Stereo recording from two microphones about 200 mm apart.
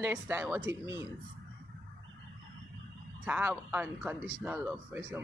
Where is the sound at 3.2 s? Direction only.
10° right (ahead or behind).